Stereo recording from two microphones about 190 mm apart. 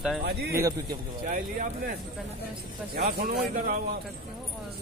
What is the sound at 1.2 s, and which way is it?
Speech, 45° right (ahead or behind).